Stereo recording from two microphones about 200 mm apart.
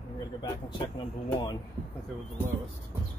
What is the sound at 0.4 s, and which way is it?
Speech, 20° left (ahead or behind).